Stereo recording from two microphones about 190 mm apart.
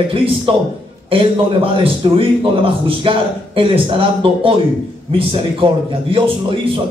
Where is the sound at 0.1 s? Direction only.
30° right (ahead or behind).